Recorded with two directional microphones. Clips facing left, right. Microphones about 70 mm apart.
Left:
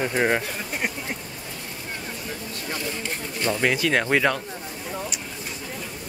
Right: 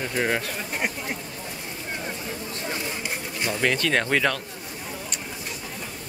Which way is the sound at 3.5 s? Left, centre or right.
Centre.